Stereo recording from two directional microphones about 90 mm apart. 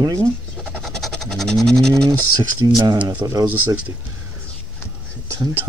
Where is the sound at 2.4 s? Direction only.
50° right (ahead or behind).